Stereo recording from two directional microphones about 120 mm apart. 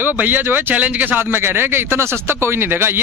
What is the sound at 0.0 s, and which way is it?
Speech, 15° right (ahead or behind).